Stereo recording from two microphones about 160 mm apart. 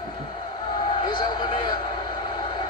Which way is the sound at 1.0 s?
25° left (ahead or behind).